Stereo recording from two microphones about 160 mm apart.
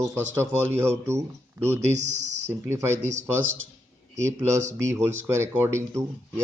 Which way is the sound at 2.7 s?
15° right (ahead or behind).